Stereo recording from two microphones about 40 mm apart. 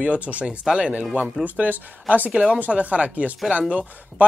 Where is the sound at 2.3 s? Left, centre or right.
Right.